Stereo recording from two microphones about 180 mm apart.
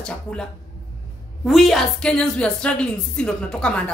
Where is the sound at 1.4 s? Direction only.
Centre (ahead or behind).